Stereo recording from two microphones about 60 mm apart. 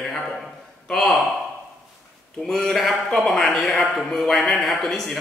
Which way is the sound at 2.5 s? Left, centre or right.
Centre.